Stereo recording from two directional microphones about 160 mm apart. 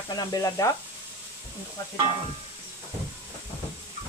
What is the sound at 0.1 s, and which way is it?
Speech, 25° left (ahead or behind).